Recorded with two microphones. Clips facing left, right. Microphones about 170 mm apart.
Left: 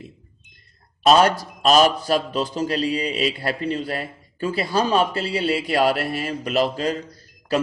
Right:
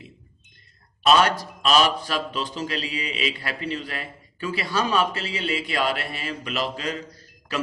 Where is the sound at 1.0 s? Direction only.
40° left (ahead or behind).